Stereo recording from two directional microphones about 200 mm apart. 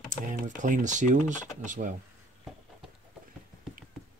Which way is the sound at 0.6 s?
40° right (ahead or behind).